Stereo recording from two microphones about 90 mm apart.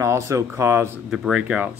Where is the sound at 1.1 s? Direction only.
10° right (ahead or behind).